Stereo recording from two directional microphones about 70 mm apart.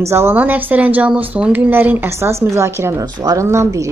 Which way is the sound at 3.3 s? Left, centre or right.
Right.